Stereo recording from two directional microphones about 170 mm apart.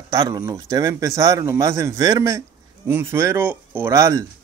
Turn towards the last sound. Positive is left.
turn(degrees=-20)  # may be behind; listen again after turning